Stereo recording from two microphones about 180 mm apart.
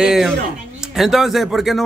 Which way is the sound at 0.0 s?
Centre (ahead or behind).